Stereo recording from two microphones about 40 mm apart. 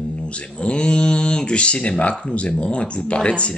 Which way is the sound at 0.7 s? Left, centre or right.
Left.